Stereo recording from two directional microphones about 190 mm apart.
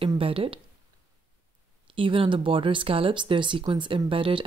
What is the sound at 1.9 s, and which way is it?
Speech, 30° right (ahead or behind).